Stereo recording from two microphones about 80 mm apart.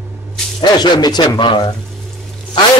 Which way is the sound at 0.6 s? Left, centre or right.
Left.